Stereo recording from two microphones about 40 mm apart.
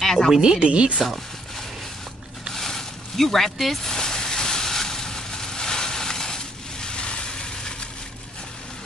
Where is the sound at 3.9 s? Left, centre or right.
Centre.